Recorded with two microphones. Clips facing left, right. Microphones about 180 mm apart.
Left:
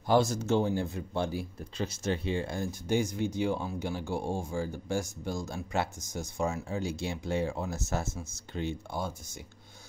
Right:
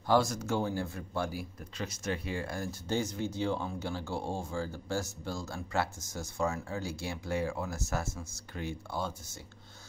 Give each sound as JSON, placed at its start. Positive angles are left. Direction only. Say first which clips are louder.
{"t": 0.0, "sound": "speech", "louder": "left 2 dB", "side_deg": 20}